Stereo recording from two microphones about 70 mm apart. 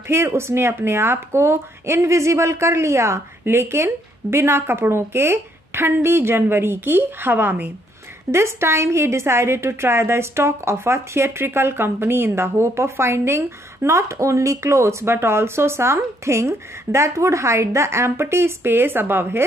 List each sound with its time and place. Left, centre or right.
0.1 s speech: right
8.3 s speech: right